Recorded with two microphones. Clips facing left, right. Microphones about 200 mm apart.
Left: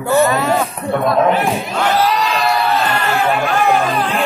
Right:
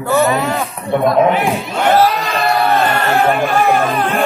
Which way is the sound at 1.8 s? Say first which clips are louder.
Right 4 dB; 55° right (ahead or behind).